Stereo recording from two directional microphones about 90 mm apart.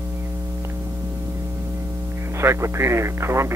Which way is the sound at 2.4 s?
30° right (ahead or behind).